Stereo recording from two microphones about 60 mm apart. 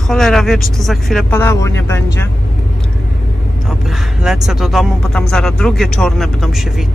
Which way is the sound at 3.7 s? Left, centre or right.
Centre.